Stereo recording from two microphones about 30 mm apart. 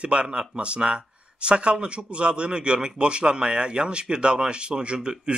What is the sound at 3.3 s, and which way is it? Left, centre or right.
Speech, right.